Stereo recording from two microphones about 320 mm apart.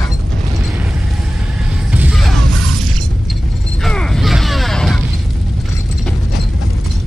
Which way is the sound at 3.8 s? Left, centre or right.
Centre.